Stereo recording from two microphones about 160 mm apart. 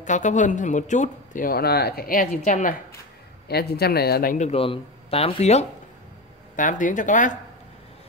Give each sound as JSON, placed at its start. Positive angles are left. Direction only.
{"t": 0.0, "sound": "speech", "side_deg": 50}
{"t": 3.4, "sound": "speech", "side_deg": 85}
{"t": 4.5, "sound": "speech", "side_deg": 35}
{"t": 6.5, "sound": "speech", "side_deg": 55}